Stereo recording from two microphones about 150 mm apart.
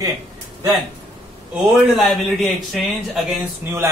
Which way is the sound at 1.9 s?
Centre (ahead or behind).